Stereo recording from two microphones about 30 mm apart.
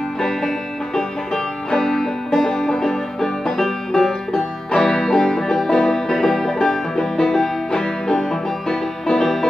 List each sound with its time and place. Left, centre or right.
0.2 s music: centre
4.3 s music: left